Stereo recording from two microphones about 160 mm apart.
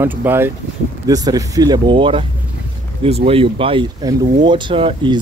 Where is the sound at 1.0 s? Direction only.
25° right (ahead or behind).